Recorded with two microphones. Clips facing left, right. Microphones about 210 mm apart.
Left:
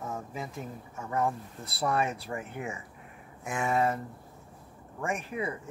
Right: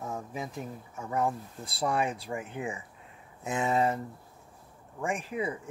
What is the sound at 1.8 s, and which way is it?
Speech, 15° right (ahead or behind).